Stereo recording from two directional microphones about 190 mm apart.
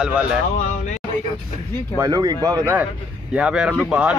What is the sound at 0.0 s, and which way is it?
Speech, 5° right (ahead or behind).